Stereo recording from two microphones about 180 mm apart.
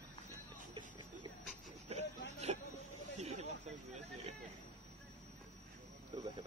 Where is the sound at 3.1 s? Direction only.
40° right (ahead or behind).